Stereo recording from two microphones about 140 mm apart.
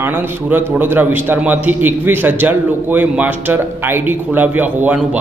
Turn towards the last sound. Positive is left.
turn(degrees=-10)  # may be behind; listen again after turning